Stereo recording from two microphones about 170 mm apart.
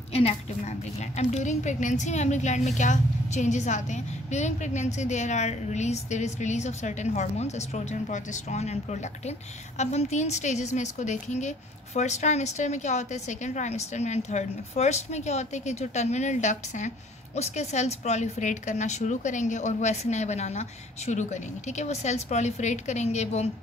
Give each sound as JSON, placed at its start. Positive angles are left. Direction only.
{"t": 0.1, "sound": "a woman's voice", "side_deg": 35}